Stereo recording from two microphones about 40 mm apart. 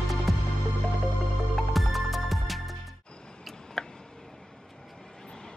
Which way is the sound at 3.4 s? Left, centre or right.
Centre.